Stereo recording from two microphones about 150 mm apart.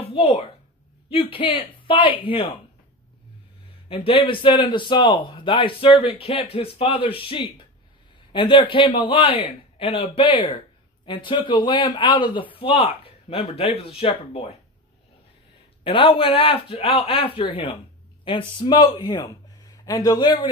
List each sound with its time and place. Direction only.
0.0 s a sound: 40° left (ahead or behind)
1.1 s speech: 35° left (ahead or behind)
3.9 s speech: 35° left (ahead or behind)
15.8 s speech: 35° left (ahead or behind)